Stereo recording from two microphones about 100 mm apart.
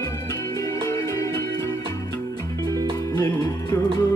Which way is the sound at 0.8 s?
35° left (ahead or behind).